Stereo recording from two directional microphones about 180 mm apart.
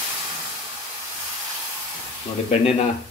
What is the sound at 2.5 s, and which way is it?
Speech, 35° left (ahead or behind).